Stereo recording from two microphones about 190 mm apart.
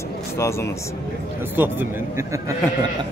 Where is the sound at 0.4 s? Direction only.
15° left (ahead or behind).